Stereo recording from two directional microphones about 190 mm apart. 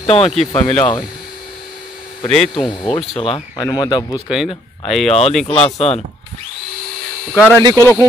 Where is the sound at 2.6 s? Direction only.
25° left (ahead or behind).